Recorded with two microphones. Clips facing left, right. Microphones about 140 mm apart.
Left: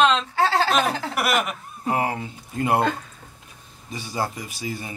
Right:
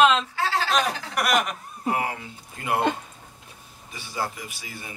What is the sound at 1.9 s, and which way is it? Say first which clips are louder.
Speech: left 4 dB; 30° left (ahead or behind).